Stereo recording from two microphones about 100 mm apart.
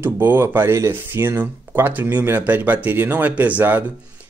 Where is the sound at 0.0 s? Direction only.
20° right (ahead or behind).